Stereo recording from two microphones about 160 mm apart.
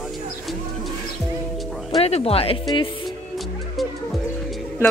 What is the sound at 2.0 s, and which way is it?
Speech, 40° left (ahead or behind).